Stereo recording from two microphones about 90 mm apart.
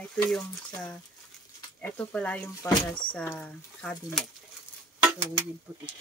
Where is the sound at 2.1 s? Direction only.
15° left (ahead or behind).